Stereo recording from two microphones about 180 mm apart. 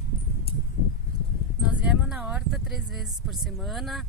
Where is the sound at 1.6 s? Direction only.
5° right (ahead or behind).